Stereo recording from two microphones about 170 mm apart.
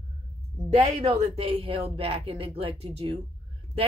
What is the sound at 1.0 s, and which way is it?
Speech, 40° right (ahead or behind).